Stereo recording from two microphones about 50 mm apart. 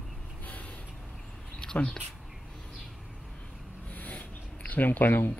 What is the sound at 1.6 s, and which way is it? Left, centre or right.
Speech, centre.